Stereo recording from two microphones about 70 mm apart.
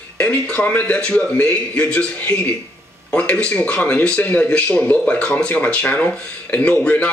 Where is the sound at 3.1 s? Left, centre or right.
Centre.